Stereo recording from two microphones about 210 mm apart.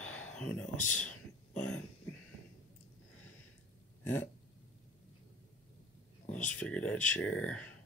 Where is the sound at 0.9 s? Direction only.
5° left (ahead or behind).